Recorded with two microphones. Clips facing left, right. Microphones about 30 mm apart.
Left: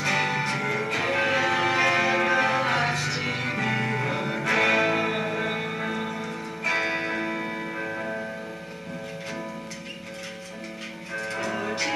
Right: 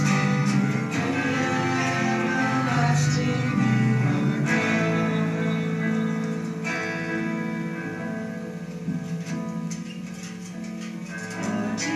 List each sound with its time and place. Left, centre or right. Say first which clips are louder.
0.0 s music: right 1 dB; left
11.3 s music: right 1 dB; left